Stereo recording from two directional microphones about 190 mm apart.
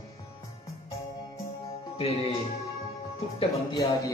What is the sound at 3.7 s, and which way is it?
Speech, 20° left (ahead or behind).